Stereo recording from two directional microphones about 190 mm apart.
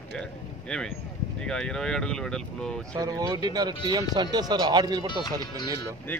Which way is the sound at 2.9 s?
20° right (ahead or behind).